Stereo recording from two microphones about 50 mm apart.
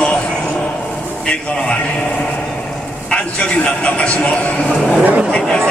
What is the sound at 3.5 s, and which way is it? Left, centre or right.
Music, left.